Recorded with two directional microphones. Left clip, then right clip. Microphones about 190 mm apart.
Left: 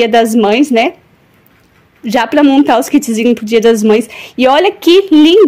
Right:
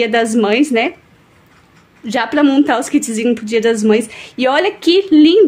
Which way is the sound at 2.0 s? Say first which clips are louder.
Left 5 dB; 30° left (ahead or behind).